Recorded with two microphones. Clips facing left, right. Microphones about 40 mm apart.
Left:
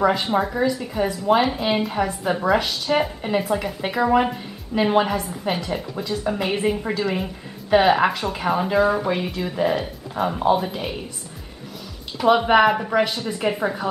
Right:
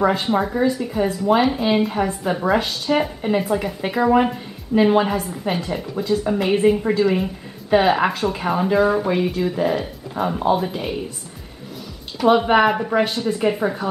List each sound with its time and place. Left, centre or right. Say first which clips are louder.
0.0 s a woman's voice: right 1 dB; centre
12.2 s a woman's voice: right 1 dB; centre